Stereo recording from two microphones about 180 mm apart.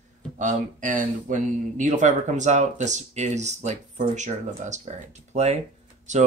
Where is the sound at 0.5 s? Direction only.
45° right (ahead or behind).